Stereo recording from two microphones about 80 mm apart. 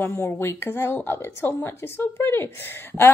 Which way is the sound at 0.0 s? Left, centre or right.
Left.